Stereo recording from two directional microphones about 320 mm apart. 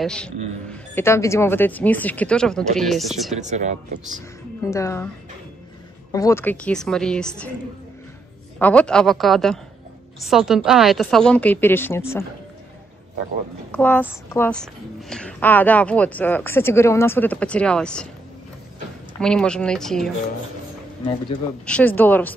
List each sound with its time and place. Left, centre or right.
0.0 s a woman's voice: centre
3.3 s speech: right
4.6 s a woman's voice: centre
6.1 s a woman's voice: centre
8.5 s a woman's voice: centre
13.7 s a woman's voice: centre
19.1 s a woman's voice: centre
21.6 s a woman's voice: centre